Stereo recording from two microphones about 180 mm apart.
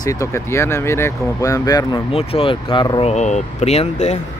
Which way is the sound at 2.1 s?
30° left (ahead or behind).